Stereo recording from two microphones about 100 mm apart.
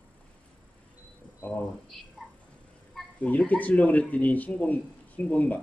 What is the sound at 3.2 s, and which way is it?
A man's voice, 15° left (ahead or behind).